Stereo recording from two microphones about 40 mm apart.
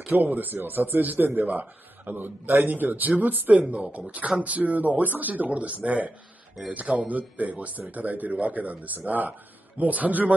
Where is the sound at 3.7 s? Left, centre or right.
Right.